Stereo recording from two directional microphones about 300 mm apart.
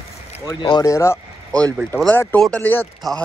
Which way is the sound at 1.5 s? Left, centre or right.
Centre.